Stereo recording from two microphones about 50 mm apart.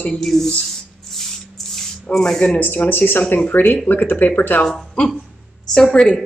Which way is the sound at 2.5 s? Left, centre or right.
Left.